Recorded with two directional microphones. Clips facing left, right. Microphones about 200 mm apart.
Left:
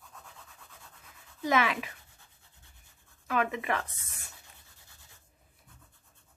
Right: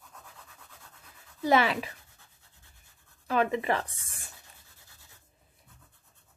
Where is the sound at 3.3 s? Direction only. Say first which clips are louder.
Right 3 dB; 30° right (ahead or behind).